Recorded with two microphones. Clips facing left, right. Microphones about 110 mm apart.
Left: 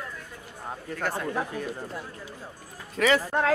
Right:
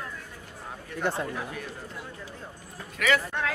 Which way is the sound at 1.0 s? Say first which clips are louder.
Right 1 dB; 25° right (ahead or behind).